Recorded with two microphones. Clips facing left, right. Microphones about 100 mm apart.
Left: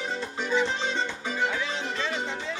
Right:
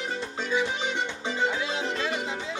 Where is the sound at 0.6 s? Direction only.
15° right (ahead or behind).